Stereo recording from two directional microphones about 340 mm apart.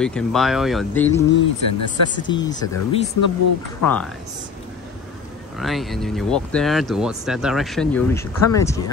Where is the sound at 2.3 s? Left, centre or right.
Centre.